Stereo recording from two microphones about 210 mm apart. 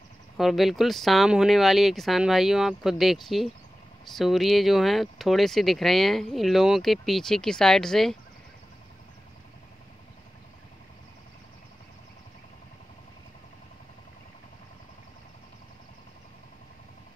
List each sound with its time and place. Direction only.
0.4 s speech: centre (ahead or behind)